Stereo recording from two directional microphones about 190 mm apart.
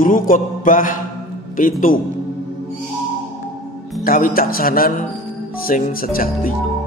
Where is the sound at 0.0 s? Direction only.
45° left (ahead or behind).